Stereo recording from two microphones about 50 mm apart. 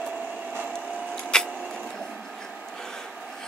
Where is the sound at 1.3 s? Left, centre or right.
Centre.